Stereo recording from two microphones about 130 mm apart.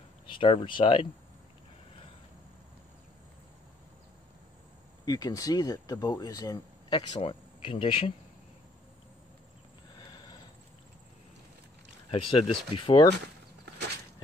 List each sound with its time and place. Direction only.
0.3 s speech: 40° left (ahead or behind)
5.0 s speech: 30° left (ahead or behind)
7.2 s speech: 45° left (ahead or behind)
9.9 s a sound: 30° left (ahead or behind)
12.1 s speech: 45° left (ahead or behind)